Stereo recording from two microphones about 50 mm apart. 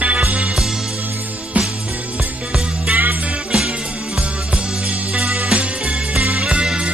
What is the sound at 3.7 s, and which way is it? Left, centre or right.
Music, right.